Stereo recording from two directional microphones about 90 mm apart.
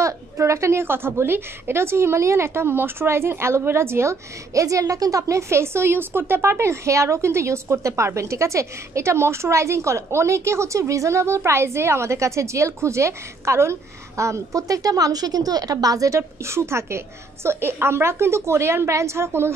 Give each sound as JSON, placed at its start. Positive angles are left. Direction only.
{"t": 0.0, "sound": "a woman's voice", "side_deg": -35}